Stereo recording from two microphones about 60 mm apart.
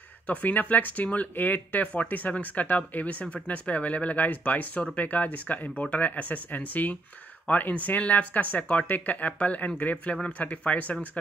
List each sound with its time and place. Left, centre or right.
0.3 s speech: left